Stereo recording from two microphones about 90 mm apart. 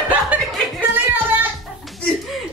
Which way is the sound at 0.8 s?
20° right (ahead or behind).